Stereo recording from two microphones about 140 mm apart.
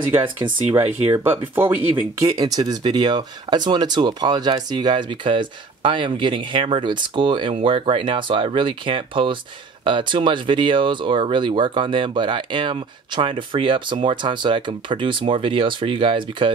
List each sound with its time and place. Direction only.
0.7 s speech: 15° right (ahead or behind)
2.3 s speech: 30° right (ahead or behind)